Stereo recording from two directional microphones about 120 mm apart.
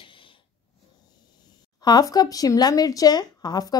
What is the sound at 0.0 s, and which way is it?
Snort, 45° left (ahead or behind).